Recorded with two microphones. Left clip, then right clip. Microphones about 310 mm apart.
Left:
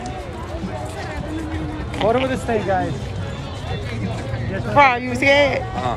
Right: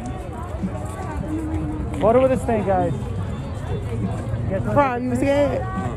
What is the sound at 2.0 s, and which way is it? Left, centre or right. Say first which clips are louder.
Speech: right 3 dB; centre.